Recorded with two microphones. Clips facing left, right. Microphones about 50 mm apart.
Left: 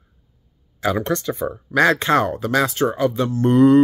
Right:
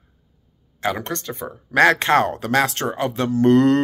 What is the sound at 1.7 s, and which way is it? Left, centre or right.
Speech, right.